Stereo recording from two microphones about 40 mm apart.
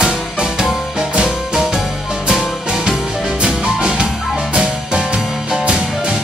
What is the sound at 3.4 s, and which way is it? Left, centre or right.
Music, centre.